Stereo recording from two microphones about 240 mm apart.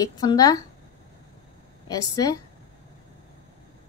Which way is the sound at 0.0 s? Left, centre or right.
Centre.